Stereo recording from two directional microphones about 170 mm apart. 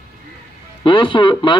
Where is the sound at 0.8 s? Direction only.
30° left (ahead or behind).